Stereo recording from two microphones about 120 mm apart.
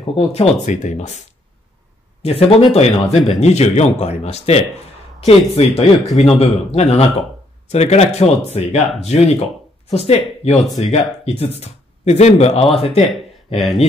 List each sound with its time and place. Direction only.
0.0 s speech: 55° left (ahead or behind); by 1.2 s 70° left (ahead or behind)
2.2 s speech: 60° left (ahead or behind)